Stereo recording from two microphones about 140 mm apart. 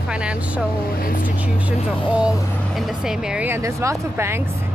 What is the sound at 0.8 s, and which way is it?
Speech, 90° left.